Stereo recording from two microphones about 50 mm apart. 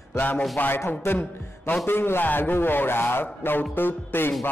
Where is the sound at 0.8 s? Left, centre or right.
Left.